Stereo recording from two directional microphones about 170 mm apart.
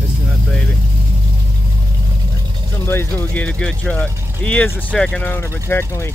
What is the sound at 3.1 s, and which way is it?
Speech, 10° left (ahead or behind).